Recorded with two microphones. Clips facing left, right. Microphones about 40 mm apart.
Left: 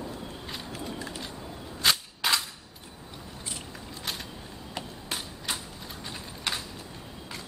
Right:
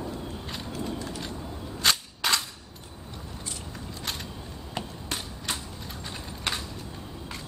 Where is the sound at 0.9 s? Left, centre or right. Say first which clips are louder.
Right 2 dB; centre.